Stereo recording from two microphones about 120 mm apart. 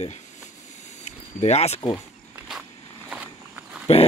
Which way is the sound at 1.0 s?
70° left (ahead or behind).